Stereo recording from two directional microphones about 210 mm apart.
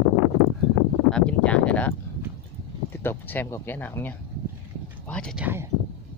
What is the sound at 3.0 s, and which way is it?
Speech, 10° left (ahead or behind).